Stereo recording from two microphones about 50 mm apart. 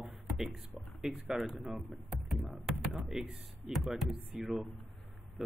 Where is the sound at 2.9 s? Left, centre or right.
Centre.